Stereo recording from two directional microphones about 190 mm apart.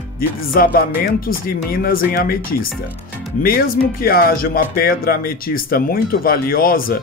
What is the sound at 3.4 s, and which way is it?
Speech, 50° left (ahead or behind).